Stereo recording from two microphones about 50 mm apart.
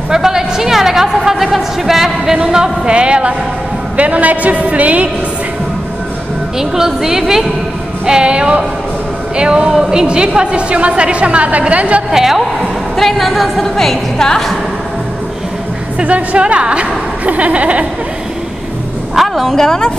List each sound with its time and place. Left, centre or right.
0.1 s a woman's voice: centre; by 5.1 s right
6.6 s a woman's voice: centre; by 12.0 s right
12.1 s a woman's voice: centre
16.0 s a woman's voice: right
19.1 s a woman's voice: centre